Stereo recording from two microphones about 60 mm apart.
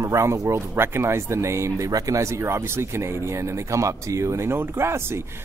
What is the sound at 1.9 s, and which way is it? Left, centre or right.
Speech, right.